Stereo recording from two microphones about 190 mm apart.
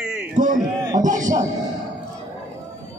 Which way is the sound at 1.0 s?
40° right (ahead or behind).